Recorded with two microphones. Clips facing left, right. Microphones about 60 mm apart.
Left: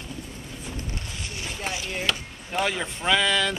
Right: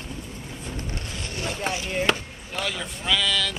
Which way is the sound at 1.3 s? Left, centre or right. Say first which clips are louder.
Right 6 dB; right.